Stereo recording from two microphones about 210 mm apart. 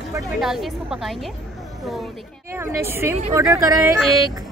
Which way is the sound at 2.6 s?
10° right (ahead or behind).